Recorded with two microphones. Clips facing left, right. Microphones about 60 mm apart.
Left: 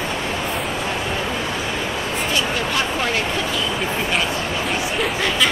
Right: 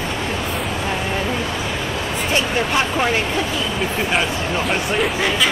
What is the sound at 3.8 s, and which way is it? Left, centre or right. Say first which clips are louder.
Speech: right 2 dB; centre.